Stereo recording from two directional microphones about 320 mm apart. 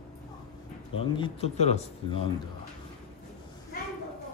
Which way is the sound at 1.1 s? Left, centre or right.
Centre.